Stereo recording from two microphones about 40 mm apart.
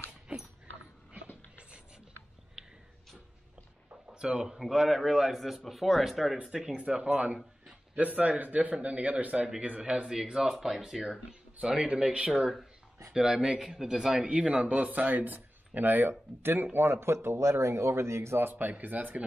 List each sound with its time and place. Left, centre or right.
0.3 s dog: right
3.9 s a sound: right
4.6 s speech: centre
5.4 s speech: centre
6.4 s speech: centre
6.8 s a man's voice: right
10.3 s speech: centre
11.6 s speech: right
12.3 s speech: centre
14.3 s speech: right
14.8 s speech: right
16.7 s speech: right
18.5 s speech: right